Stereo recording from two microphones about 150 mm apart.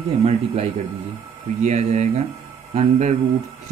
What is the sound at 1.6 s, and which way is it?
Speech, 50° right (ahead or behind).